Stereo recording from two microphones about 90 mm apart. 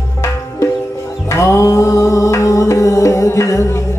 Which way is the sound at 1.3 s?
35° left (ahead or behind).